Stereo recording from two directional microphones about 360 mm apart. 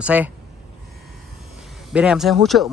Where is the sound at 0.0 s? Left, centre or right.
Centre.